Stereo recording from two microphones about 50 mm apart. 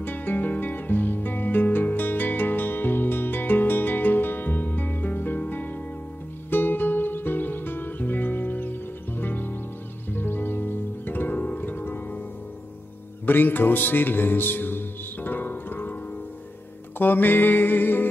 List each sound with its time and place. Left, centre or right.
0.0 s music: left
13.2 s music: left
17.0 s music: left